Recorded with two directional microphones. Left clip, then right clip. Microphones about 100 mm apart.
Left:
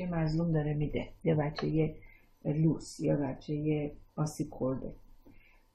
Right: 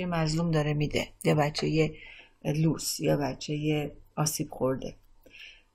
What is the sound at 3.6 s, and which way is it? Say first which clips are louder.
Speech: right 3 dB; 20° right (ahead or behind).